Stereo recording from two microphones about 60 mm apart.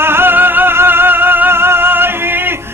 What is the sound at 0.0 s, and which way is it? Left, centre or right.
Music, right.